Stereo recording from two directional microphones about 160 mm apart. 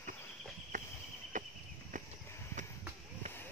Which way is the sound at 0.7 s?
50° right (ahead or behind).